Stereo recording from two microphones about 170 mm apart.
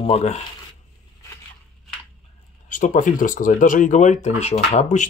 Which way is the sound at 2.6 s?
50° left (ahead or behind).